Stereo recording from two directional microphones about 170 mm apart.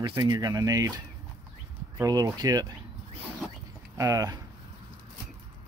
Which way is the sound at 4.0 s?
20° right (ahead or behind).